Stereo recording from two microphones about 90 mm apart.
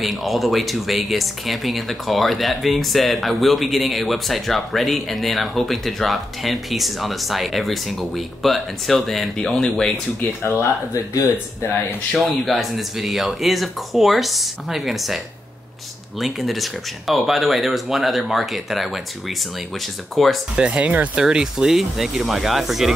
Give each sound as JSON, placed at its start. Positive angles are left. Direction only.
{"t": 0.0, "sound": "speech", "side_deg": 0}
{"t": 10.4, "sound": "speech", "side_deg": 30}
{"t": 12.1, "sound": "speech", "side_deg": 0}
{"t": 20.5, "sound": "speech", "side_deg": -15}